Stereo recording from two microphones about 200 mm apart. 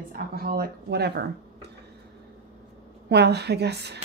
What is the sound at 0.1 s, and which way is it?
A woman's voice, 50° right (ahead or behind).